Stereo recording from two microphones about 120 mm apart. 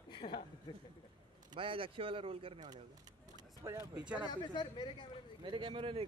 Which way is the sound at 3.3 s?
25° right (ahead or behind).